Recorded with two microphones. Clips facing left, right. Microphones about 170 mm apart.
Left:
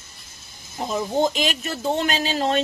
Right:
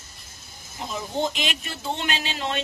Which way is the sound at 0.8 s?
40° left (ahead or behind).